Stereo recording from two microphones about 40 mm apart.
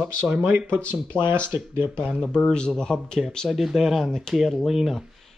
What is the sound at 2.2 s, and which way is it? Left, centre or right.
A man's voice, centre.